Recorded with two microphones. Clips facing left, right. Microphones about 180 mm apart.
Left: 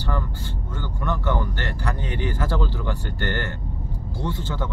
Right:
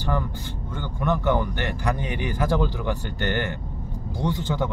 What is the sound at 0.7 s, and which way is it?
Speech, 15° right (ahead or behind).